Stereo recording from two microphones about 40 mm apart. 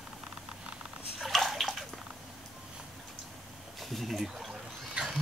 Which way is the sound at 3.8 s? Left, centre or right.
Centre.